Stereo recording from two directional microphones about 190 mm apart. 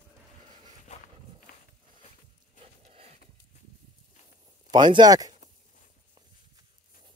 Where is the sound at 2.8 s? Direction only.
35° right (ahead or behind).